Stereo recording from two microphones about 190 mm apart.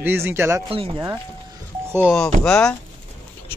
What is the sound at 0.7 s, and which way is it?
Speech, 30° right (ahead or behind).